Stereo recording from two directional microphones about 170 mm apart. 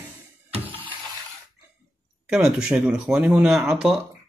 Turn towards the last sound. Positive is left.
turn(degrees=-5)  # may be behind; listen again after turning